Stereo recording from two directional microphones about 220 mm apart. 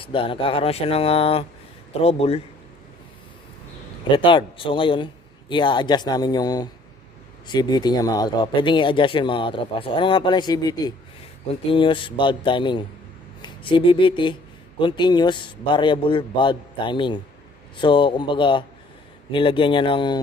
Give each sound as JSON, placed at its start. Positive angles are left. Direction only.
{"t": 0.0, "sound": "speech", "side_deg": 25}
{"t": 4.2, "sound": "speech", "side_deg": 20}